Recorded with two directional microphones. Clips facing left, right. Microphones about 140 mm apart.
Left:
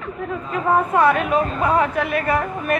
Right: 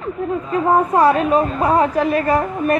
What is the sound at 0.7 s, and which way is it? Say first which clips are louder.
A woman's voice: right 2 dB; 35° right (ahead or behind).